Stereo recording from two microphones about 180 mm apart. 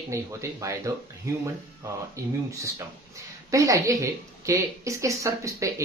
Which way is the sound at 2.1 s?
15° right (ahead or behind).